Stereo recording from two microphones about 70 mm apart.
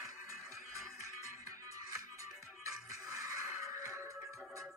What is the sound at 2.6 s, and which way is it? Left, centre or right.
Music, right.